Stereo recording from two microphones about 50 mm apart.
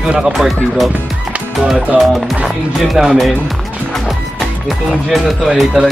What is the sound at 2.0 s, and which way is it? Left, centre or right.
Speech, centre.